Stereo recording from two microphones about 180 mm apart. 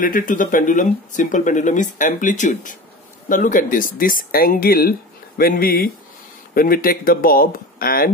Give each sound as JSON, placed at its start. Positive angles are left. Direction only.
{"t": 0.0, "sound": "speech", "side_deg": 45}